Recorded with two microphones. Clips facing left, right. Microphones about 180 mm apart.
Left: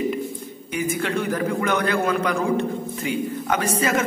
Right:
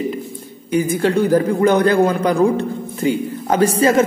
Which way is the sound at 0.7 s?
35° right (ahead or behind).